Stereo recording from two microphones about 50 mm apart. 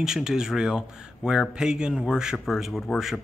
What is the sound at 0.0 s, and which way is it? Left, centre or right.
Speech, centre.